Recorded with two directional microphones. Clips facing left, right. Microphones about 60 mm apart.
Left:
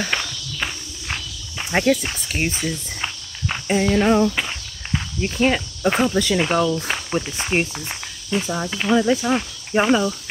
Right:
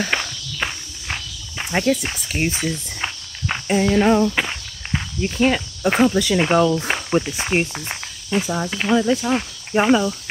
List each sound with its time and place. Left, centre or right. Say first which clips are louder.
0.1 s walk: right 1 dB; right
1.7 s speech: left 1 dB; centre
2.2 s a sound: right 1 dB; centre
2.6 s walk: right 1 dB; right
3.6 s a sound: right 1 dB; centre
4.4 s walk: right 3 dB; right
5.2 s speech: right 1 dB; centre
5.9 s a sound: right 4 dB; centre
6.4 s speech: right 3 dB; right
7.9 s cricket: right 2 dB; centre
8.6 s speech: even; centre
8.9 s a sound: even; centre